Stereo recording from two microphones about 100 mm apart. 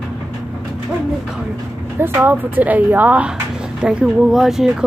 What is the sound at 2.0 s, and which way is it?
A woman's voice, 20° right (ahead or behind).